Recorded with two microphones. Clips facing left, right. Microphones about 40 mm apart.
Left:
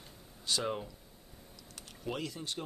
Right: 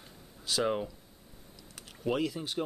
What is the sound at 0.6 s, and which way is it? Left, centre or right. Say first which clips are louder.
Speech: right 5 dB; centre.